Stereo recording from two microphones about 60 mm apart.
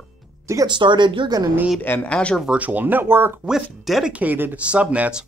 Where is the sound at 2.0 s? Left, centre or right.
Centre.